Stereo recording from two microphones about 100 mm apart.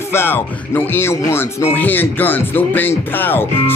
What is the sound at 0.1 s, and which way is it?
Speech, 20° left (ahead or behind).